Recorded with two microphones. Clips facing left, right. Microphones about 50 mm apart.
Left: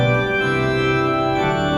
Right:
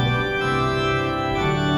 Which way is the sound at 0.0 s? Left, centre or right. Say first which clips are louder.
Left 4 dB; centre.